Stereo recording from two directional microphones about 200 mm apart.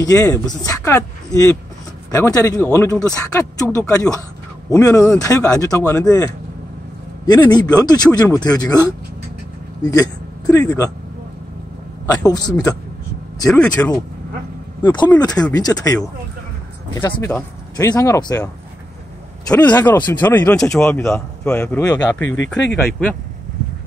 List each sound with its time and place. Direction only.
0.0 s speech: 15° left (ahead or behind)
12.1 s speech: 20° left (ahead or behind)
13.5 s speech: 5° left (ahead or behind)
14.8 s speech: 20° left (ahead or behind)
19.5 s speech: 5° left (ahead or behind)
22.2 s speech: 70° left (ahead or behind)